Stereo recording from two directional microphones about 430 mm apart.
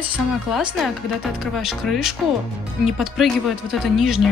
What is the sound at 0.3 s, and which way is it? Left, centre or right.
Speech, centre.